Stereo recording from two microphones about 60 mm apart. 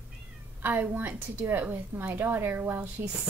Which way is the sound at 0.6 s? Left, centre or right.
Right.